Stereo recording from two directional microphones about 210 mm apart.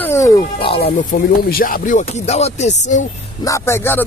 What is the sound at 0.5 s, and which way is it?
Speech, 25° left (ahead or behind).